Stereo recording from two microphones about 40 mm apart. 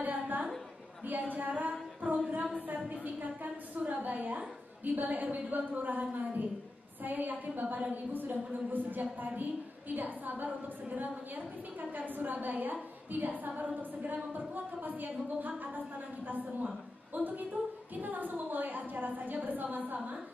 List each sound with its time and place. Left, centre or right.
0.0 s a sound: right
4.8 s a woman's voice: right
7.6 s a woman's voice: right
7.9 s a woman's voice: right